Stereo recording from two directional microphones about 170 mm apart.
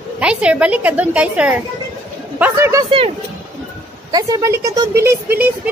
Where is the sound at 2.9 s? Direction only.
30° right (ahead or behind).